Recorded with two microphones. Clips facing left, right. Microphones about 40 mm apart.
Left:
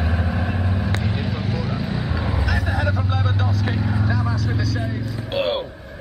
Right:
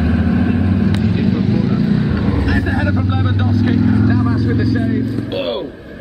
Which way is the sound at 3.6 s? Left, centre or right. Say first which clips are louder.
Right 10 dB; centre.